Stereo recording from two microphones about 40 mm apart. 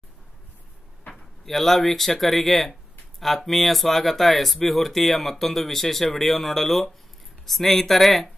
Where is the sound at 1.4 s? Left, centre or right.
Centre.